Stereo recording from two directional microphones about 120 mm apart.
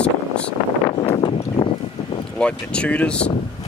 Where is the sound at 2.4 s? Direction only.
10° left (ahead or behind).